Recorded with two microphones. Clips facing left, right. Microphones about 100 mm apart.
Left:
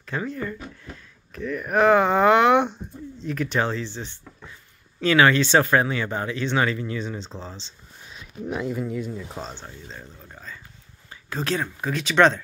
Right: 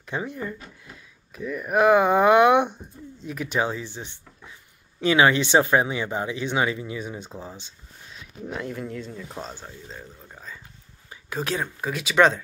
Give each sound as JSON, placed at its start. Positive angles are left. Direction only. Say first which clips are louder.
{"t": 0.0, "sound": "speech", "louder": "left 1 dB", "side_deg": -15}
{"t": 8.5, "sound": "speech", "louder": "left 4 dB", "side_deg": 5}